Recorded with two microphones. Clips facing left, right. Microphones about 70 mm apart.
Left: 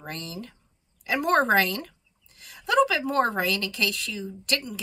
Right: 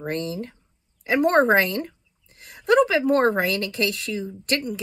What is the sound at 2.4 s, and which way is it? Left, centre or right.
A woman's voice, right.